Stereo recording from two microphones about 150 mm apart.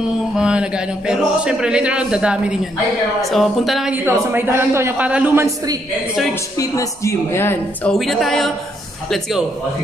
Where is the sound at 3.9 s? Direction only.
15° right (ahead or behind).